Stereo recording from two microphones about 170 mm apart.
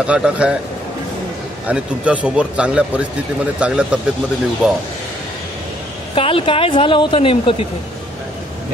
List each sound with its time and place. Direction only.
0.0 s speech: 5° right (ahead or behind)
1.7 s speech: 5° right (ahead or behind)
6.1 s a woman's voice: 35° left (ahead or behind)